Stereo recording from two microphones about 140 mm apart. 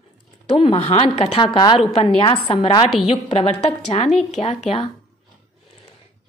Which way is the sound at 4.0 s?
55° left (ahead or behind).